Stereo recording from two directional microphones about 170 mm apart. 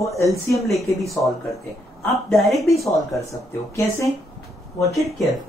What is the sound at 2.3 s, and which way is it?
Speech, centre (ahead or behind).